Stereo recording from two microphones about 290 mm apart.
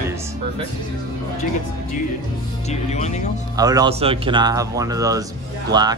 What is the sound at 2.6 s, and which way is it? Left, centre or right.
Speech, left.